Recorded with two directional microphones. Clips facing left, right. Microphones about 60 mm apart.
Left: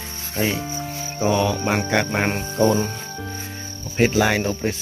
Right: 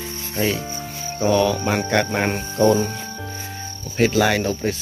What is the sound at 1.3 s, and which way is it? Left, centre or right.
Speech, centre.